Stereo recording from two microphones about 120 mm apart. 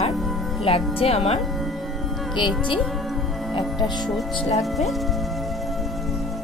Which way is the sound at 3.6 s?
35° left (ahead or behind).